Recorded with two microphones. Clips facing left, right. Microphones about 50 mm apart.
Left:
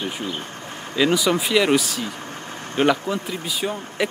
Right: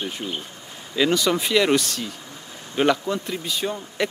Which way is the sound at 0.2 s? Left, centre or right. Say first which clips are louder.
Left 2 dB; left.